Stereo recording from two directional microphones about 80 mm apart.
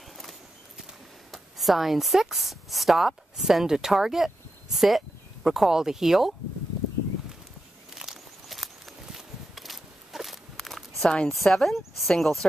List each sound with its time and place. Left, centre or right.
0.2 s clip-clop: centre
1.3 s a woman's voice: centre
7.9 s walk: centre
11.0 s speech: centre